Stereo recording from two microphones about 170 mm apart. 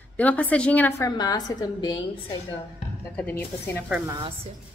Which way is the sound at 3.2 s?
10° left (ahead or behind).